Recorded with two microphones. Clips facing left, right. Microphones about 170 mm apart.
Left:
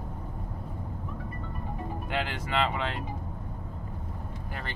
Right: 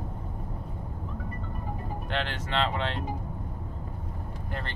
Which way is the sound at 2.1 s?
10° left (ahead or behind).